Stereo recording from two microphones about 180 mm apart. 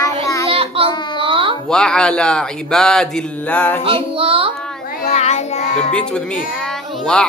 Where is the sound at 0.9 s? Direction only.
25° left (ahead or behind).